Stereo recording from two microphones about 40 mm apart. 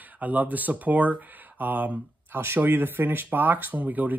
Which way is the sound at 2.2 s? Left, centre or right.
Right.